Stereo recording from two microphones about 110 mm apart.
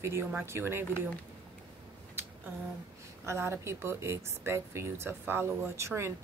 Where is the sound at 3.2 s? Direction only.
25° right (ahead or behind).